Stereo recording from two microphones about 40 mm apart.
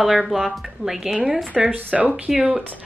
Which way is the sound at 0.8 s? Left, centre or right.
Centre.